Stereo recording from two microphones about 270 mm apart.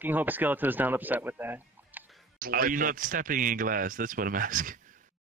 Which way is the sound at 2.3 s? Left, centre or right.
Right.